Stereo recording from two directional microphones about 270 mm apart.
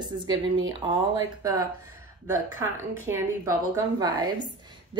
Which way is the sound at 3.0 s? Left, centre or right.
Centre.